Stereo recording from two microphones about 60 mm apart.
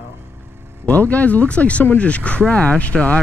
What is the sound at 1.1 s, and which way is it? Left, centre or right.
Speech, left.